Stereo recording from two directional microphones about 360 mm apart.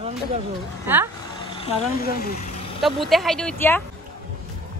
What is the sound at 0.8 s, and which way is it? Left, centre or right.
Speech, centre.